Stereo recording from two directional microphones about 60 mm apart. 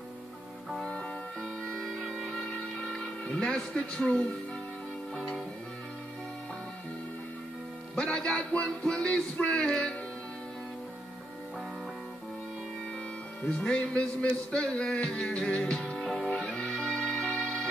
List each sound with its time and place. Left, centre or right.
0.8 s music: centre
5.1 s music: centre
7.9 s a man's voice: centre
13.4 s a man's voice: centre
16.3 s music: centre